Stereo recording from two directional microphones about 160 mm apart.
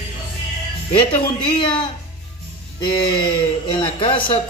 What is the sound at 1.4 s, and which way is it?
A man's voice, 30° left (ahead or behind).